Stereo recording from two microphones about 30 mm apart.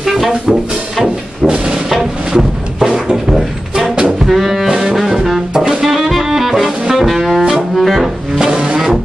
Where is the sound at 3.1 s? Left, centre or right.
Centre.